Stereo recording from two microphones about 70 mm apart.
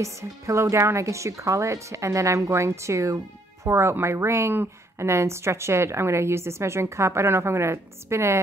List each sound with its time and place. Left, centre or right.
0.0 s a woman's voice: right